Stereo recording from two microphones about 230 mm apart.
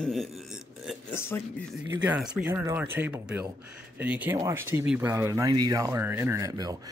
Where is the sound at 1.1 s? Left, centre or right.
Centre.